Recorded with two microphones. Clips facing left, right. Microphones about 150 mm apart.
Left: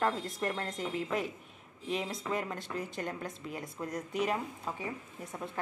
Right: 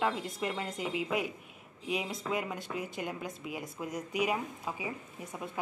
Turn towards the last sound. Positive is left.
turn(degrees=-5)  # may be behind; listen again after turning